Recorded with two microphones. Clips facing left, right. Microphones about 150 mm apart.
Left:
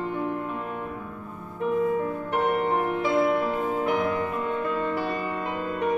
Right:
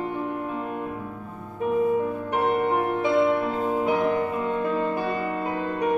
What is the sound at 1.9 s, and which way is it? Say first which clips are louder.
Music: right 2 dB; 15° right (ahead or behind).